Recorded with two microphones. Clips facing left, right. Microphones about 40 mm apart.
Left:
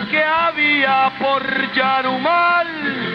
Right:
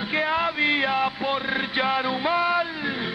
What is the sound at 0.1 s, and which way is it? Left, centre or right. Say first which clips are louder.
A man's voice: left 8 dB; left.